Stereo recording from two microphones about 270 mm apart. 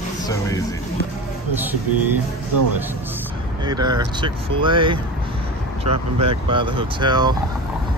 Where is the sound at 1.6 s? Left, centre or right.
Centre.